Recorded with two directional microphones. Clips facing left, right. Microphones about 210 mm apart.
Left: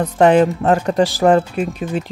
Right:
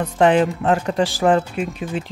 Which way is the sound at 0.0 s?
40° left (ahead or behind).